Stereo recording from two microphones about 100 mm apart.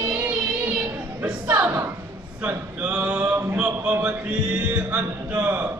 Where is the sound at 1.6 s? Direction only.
20° right (ahead or behind).